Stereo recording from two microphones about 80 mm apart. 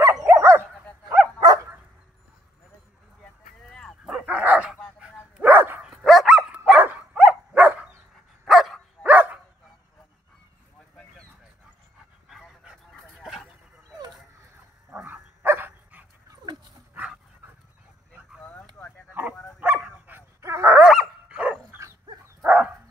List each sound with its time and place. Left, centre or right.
0.0 s dog: right
1.4 s dog: right
4.2 s dog: centre
5.9 s dog: centre
6.5 s dog: centre
8.5 s dog: centre
9.0 s dog: centre
12.7 s dog: centre
15.0 s dog: right
19.6 s dog: centre
20.3 s dog: right
20.8 s dog: centre
21.3 s dog: centre